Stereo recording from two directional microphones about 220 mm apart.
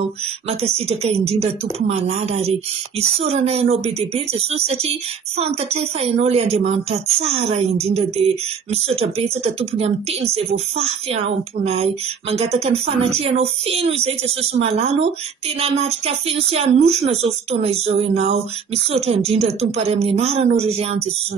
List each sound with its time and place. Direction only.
0.5 s speech: 30° right (ahead or behind)